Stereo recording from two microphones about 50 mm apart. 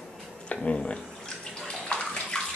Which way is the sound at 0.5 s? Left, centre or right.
Left.